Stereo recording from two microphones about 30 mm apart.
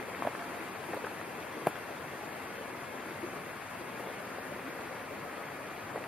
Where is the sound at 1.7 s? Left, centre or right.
Centre.